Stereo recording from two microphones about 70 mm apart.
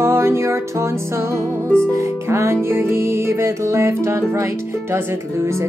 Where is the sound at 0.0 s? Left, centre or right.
Right.